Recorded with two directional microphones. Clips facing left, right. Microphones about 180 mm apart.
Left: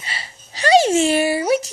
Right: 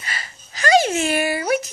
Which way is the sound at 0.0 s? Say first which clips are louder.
Even; 30° left (ahead or behind).